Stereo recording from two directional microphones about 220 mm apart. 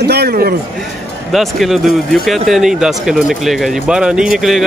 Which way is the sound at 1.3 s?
Centre (ahead or behind).